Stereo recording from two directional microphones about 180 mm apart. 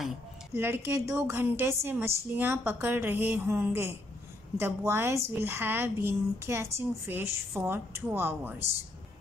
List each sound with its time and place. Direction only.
0.6 s a woman's voice: 15° right (ahead or behind)